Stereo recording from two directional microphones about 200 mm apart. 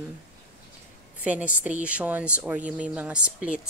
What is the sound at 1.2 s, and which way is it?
A woman's voice, 5° right (ahead or behind).